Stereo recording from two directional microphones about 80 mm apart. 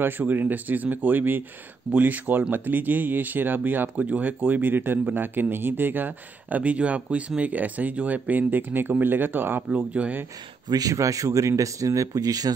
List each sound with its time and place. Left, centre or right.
0.0 s speech: right
10.7 s speech: right